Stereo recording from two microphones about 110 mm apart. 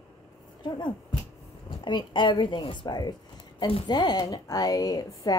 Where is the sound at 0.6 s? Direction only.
45° left (ahead or behind).